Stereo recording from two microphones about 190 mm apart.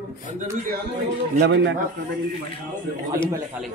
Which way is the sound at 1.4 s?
65° right (ahead or behind).